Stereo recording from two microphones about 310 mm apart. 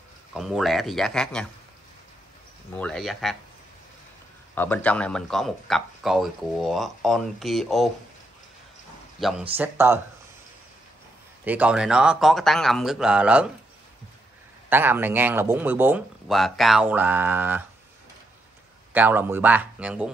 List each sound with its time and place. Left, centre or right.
0.3 s speech: centre
2.8 s speech: centre
4.6 s speech: centre
9.2 s speech: centre
11.4 s speech: centre
14.7 s speech: centre
18.9 s speech: centre